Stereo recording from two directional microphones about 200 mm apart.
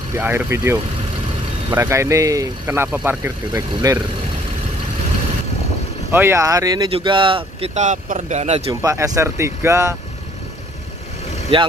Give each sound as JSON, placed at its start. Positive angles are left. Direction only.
{"t": 0.1, "sound": "speech", "side_deg": -10}
{"t": 6.1, "sound": "speech", "side_deg": -15}
{"t": 8.8, "sound": "speech", "side_deg": -15}
{"t": 11.5, "sound": "speech", "side_deg": -25}